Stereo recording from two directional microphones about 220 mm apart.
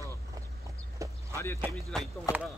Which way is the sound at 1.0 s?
15° right (ahead or behind).